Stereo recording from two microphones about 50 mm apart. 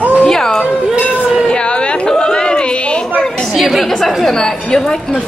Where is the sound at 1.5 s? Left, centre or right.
Centre.